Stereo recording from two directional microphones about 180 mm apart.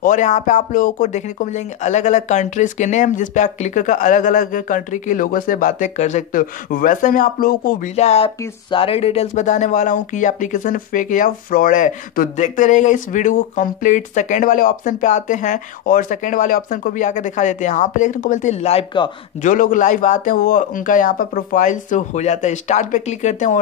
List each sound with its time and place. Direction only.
0.0 s speech: 45° left (ahead or behind)
7.9 s speech: 35° left (ahead or behind)
19.5 s speech: 50° left (ahead or behind)